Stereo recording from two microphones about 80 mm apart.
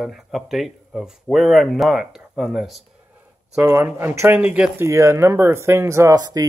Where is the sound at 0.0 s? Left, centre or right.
Centre.